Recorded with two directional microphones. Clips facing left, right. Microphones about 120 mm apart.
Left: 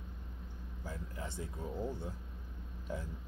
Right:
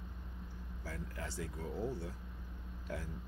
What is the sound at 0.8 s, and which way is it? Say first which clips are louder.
Speech: left 1 dB; 20° left (ahead or behind).